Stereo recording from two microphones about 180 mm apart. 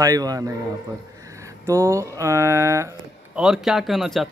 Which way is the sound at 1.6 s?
15° right (ahead or behind).